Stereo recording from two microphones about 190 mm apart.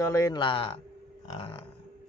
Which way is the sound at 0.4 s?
30° left (ahead or behind).